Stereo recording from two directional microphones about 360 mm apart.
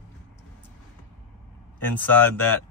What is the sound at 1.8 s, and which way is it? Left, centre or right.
Speech, centre.